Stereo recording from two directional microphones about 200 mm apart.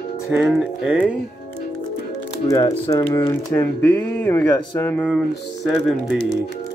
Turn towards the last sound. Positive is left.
turn(degrees=0)  # may be behind; listen again after turning